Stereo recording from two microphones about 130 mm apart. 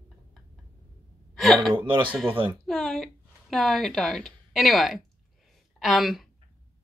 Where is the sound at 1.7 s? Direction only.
40° right (ahead or behind).